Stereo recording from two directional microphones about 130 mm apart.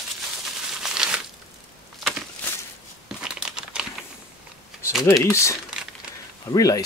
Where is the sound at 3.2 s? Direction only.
5° right (ahead or behind).